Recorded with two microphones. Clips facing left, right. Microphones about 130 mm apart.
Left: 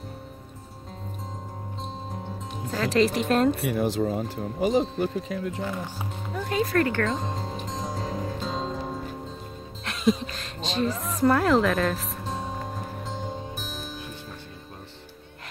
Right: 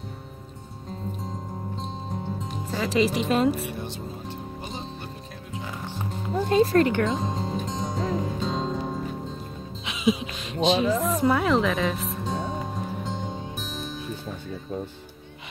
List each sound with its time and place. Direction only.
1.8 s music: centre (ahead or behind)
3.6 s speech: 90° left
5.5 s speech: centre (ahead or behind)
6.3 s speech: 30° right (ahead or behind)
7.1 s music: centre (ahead or behind)
9.8 s speech: centre (ahead or behind)
11.0 s music: centre (ahead or behind)